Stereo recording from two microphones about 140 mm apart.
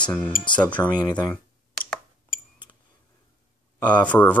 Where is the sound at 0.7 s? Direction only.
30° left (ahead or behind).